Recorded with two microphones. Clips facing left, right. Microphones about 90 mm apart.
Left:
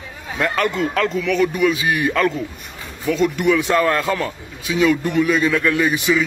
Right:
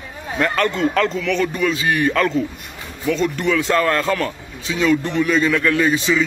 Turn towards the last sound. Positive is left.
turn(degrees=15)  # may be behind; listen again after turning